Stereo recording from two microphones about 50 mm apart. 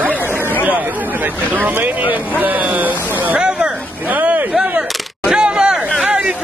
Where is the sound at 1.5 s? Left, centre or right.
Right.